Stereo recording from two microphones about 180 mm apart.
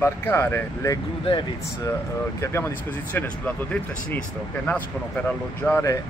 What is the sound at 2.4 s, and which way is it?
Speech, 15° left (ahead or behind).